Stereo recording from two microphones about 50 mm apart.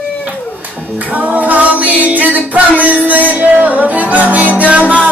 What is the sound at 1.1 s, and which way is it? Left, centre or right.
Music, right.